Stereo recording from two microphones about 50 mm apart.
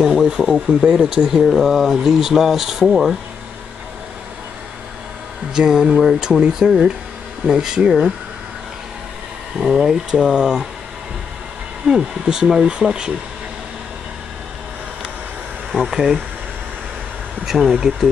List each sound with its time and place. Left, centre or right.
0.0 s speech: centre
5.5 s speech: centre
6.6 s speech: right
9.6 s speech: centre
11.8 s speech: centre
15.7 s speech: centre
17.5 s speech: centre